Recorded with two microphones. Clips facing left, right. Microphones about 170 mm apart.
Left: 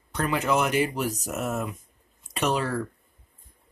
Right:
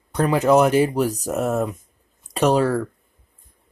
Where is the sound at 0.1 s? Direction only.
35° right (ahead or behind).